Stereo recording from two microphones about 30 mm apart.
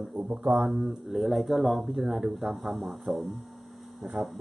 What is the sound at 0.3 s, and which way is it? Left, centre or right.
Speech, right.